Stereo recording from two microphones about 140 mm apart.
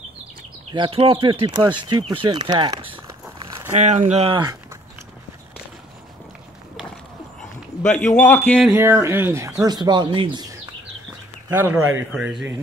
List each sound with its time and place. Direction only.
0.7 s speech: 35° right (ahead or behind)
3.7 s speech: 55° right (ahead or behind)
7.8 s a man's voice: 15° left (ahead or behind)
8.6 s speech: 15° right (ahead or behind); by 10.5 s 35° right (ahead or behind)
11.5 s speech: 15° right (ahead or behind)
12.1 s speech: 5° right (ahead or behind)